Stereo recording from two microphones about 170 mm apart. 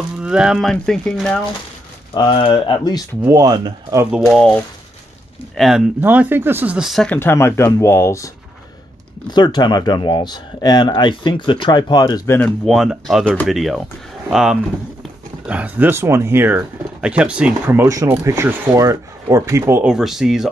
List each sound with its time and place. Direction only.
0.2 s speech: 5° right (ahead or behind)
2.1 s speech: 30° left (ahead or behind)
3.3 s speech: 20° right (ahead or behind)
4.3 s speech: 5° left (ahead or behind)
7.2 s speech: 15° left (ahead or behind)
9.3 s speech: 25° left (ahead or behind)
12.4 s speech: 5° left (ahead or behind); by 19.8 s 15° right (ahead or behind)
19.8 s speech: 5° right (ahead or behind)